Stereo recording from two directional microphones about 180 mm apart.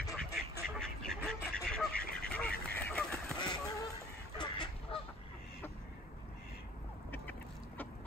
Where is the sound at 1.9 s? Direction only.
55° left (ahead or behind).